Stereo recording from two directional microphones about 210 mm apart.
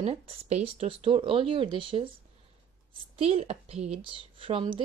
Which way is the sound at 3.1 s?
30° right (ahead or behind).